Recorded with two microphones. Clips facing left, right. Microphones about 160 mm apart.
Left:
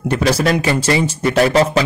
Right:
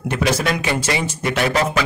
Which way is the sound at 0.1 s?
35° left (ahead or behind).